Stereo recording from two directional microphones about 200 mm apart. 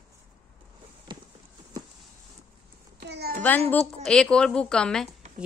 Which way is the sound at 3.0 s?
55° right (ahead or behind).